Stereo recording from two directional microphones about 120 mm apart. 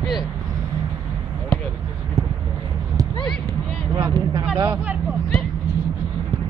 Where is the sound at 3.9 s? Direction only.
30° right (ahead or behind).